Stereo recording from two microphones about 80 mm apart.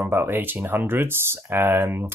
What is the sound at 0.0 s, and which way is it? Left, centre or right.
Speech, right.